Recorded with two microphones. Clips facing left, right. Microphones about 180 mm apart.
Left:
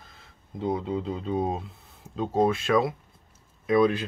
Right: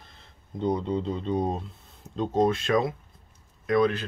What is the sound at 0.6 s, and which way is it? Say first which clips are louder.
Speech: right 1 dB; 5° left (ahead or behind).